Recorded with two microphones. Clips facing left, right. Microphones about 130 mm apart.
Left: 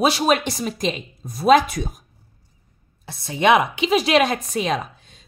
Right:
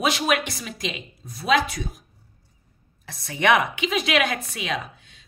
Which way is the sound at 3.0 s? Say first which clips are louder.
Left 4 dB; 25° left (ahead or behind).